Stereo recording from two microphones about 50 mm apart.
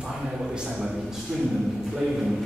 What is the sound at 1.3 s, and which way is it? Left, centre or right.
Speech, centre.